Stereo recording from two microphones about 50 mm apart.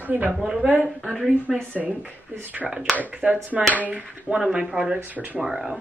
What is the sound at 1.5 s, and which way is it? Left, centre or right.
Speech, centre.